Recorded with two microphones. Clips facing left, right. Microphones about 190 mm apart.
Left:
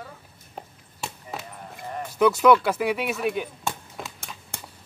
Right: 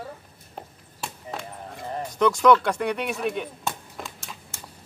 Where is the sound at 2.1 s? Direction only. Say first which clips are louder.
Left 1 dB; 5° left (ahead or behind).